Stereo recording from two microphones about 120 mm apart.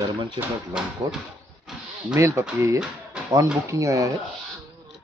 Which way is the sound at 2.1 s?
25° right (ahead or behind).